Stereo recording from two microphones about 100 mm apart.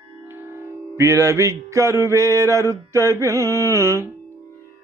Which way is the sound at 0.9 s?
30° right (ahead or behind).